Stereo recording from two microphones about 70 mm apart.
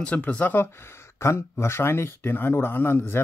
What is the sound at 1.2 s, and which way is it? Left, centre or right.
Speech, left.